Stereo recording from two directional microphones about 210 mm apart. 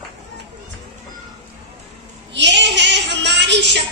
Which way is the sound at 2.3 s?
55° right (ahead or behind).